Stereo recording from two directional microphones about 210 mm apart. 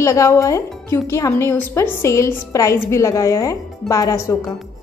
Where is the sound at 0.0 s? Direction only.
15° left (ahead or behind).